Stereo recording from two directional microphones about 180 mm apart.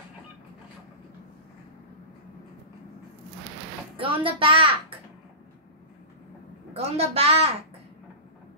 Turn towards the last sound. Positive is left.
turn(degrees=-35)  # may be behind; listen again after turning